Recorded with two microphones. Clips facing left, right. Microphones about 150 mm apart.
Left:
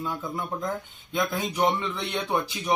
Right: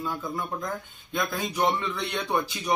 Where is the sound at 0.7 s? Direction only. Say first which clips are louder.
Left 2 dB; 10° left (ahead or behind).